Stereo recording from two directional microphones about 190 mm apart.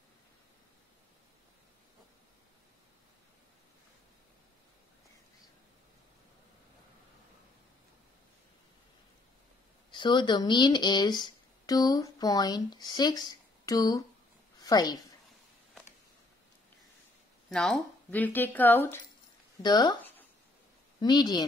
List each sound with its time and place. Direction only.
9.8 s a woman's voice: 25° left (ahead or behind)
17.5 s a woman's voice: centre (ahead or behind)
19.6 s a woman's voice: 20° left (ahead or behind)
20.0 s a sound: 10° left (ahead or behind)
21.0 s a woman's voice: 20° left (ahead or behind)